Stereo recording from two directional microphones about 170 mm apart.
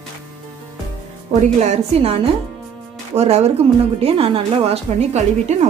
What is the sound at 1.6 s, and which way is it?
Speech, 35° right (ahead or behind).